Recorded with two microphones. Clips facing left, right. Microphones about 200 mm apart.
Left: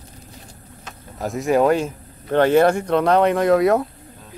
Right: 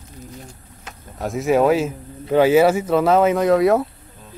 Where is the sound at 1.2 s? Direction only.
Centre (ahead or behind).